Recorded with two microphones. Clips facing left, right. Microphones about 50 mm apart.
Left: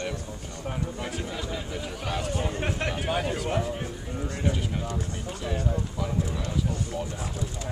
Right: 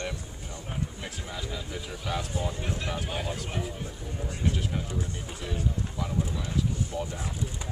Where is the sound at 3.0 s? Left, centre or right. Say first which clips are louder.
Left 6 dB; left.